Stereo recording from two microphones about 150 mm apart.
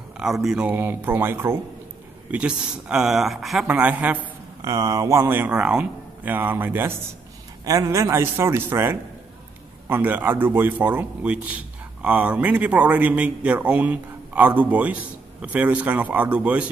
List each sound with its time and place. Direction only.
0.2 s a man's voice: 5° right (ahead or behind)
4.6 s a man's voice: 20° right (ahead or behind)